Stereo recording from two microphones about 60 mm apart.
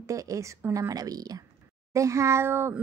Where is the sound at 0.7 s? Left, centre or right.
Right.